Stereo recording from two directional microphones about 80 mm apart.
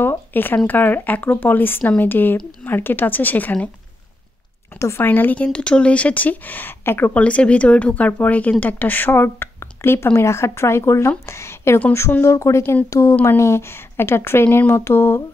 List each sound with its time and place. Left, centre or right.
0.0 s a sound: left
0.7 s a woman's voice: left
4.7 s speech: left
5.0 s a woman's voice: left
7.2 s a woman's voice: centre